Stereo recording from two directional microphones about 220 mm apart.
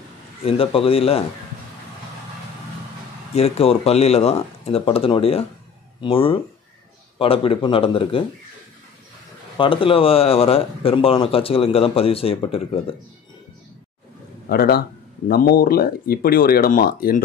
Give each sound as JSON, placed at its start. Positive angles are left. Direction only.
{"t": 0.4, "sound": "speech", "side_deg": 25}
{"t": 3.3, "sound": "speech", "side_deg": 30}
{"t": 9.6, "sound": "speech", "side_deg": 25}
{"t": 14.5, "sound": "speech", "side_deg": 45}